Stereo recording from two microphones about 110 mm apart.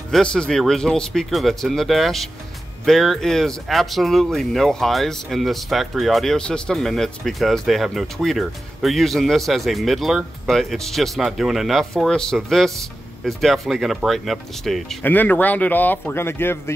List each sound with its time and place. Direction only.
0.1 s speech: 10° left (ahead or behind)
15.0 s speech: 15° left (ahead or behind)